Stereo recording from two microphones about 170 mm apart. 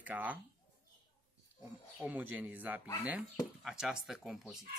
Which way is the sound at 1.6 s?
10° right (ahead or behind).